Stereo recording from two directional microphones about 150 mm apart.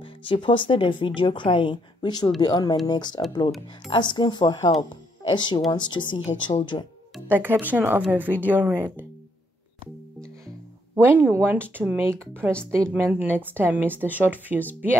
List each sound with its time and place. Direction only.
0.0 s a woman's voice: 35° left (ahead or behind)
7.2 s speech: 15° right (ahead or behind)
11.1 s speech: 15° right (ahead or behind)